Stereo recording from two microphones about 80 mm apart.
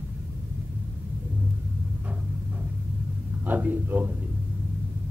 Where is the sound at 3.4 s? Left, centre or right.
Right.